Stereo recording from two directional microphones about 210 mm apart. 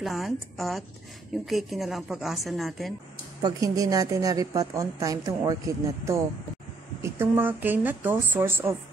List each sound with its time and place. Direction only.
0.0 s a woman's voice: centre (ahead or behind)
3.4 s a woman's voice: 15° right (ahead or behind)